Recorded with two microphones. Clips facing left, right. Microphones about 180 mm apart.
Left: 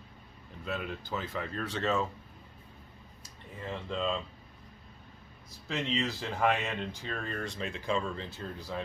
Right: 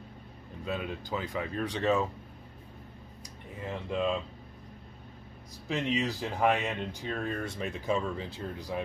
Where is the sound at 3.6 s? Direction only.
15° right (ahead or behind).